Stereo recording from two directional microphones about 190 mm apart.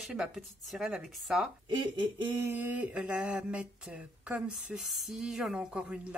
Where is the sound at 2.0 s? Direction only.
25° right (ahead or behind).